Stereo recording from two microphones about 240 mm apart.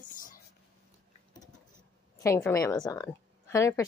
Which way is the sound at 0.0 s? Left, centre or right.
Left.